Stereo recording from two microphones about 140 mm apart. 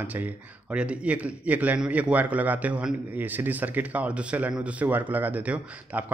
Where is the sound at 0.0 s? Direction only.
10° right (ahead or behind).